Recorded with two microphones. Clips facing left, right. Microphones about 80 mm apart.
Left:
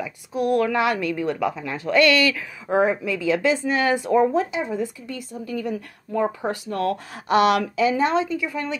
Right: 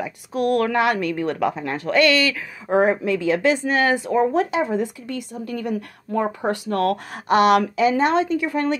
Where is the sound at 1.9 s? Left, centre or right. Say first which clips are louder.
Even; right.